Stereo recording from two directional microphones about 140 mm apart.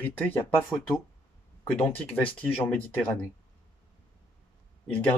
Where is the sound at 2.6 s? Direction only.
10° left (ahead or behind).